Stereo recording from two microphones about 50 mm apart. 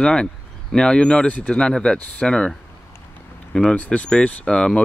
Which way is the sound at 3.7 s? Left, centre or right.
Left.